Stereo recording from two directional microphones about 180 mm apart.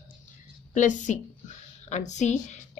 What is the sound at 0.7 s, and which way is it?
A woman's voice, 45° left (ahead or behind).